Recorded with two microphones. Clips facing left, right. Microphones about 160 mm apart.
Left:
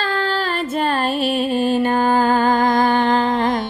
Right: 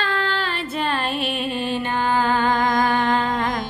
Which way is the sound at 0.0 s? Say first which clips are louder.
Left 3 dB; 35° left (ahead or behind).